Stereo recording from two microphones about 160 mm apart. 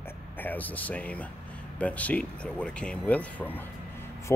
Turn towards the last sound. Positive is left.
turn(degrees=10)  # may be behind; listen again after turning